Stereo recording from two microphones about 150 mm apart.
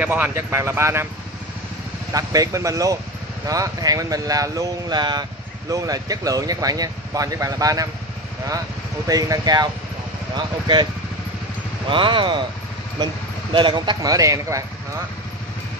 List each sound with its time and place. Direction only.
0.0 s speech: 10° right (ahead or behind)
2.1 s speech: 25° right (ahead or behind)
9.0 s speech: 25° right (ahead or behind)
11.9 s speech: 30° right (ahead or behind)